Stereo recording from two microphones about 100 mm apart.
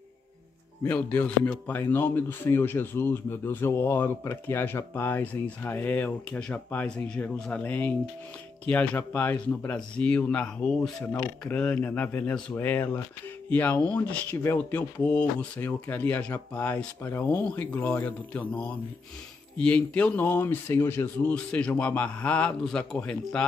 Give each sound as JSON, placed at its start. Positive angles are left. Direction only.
{"t": 0.8, "sound": "speech", "side_deg": 15}
{"t": 14.3, "sound": "speech", "side_deg": 25}
{"t": 14.8, "sound": "speech", "side_deg": 10}